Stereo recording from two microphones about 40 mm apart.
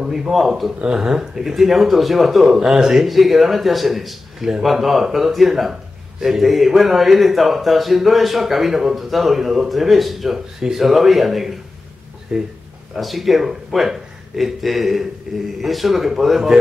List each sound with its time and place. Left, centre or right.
0.3 s speech: centre
0.7 s speech: right; by 11.5 s centre
12.3 s speech: right
12.9 s speech: centre
15.6 s speech: centre